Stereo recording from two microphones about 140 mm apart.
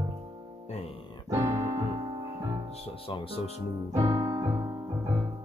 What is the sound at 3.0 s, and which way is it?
Speech, 40° left (ahead or behind).